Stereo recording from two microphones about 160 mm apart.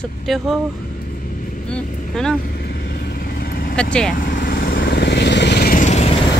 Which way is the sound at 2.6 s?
90° left.